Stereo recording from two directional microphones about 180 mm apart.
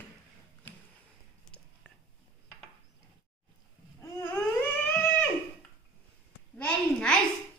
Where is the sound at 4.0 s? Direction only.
15° left (ahead or behind).